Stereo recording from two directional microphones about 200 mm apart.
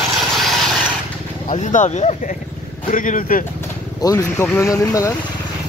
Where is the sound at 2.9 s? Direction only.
40° left (ahead or behind).